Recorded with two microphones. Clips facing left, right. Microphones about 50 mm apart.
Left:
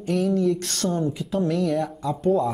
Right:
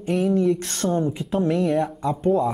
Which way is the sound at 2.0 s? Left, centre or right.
Right.